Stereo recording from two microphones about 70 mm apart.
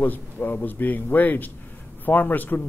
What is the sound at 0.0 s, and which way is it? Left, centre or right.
A man's voice, left.